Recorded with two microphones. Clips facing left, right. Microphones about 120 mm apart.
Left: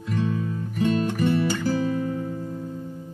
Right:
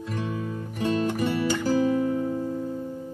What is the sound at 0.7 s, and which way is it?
Music, 15° right (ahead or behind).